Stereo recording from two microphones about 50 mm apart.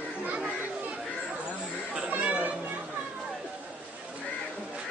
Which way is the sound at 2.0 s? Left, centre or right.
Right.